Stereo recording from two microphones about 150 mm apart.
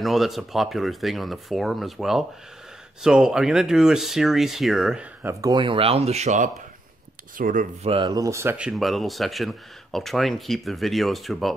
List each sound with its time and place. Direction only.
0.0 s speech: centre (ahead or behind)
5.2 s speech: 20° right (ahead or behind); by 6.5 s 50° right (ahead or behind)
7.3 s speech: 65° right (ahead or behind)
7.8 s speech: 40° right (ahead or behind)
8.1 s speech: 20° right (ahead or behind)
8.5 s speech: 5° right (ahead or behind)